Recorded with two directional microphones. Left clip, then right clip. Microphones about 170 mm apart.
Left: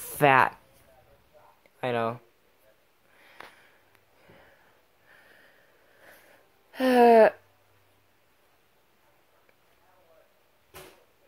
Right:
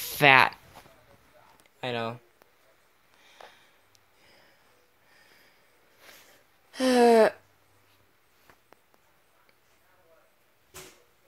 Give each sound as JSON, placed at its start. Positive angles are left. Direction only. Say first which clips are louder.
{"t": 0.2, "sound": "speech", "louder": "right 2 dB", "side_deg": 0}
{"t": 1.8, "sound": "speech", "louder": "left 4 dB", "side_deg": 15}
{"t": 6.7, "sound": "a sound", "louder": "left 2 dB", "side_deg": -20}